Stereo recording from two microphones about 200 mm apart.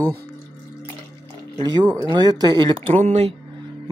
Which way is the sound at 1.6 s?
20° right (ahead or behind).